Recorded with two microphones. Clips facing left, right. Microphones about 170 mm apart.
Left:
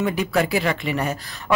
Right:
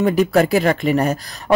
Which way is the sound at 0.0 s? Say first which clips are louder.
Right 6 dB; 40° right (ahead or behind).